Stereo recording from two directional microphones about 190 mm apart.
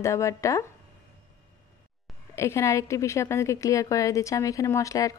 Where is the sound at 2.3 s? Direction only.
15° left (ahead or behind).